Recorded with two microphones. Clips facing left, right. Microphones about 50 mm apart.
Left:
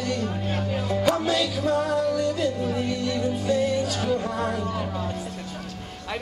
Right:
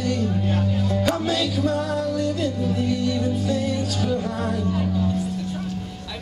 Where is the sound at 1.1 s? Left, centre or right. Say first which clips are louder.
Left 3 dB; centre.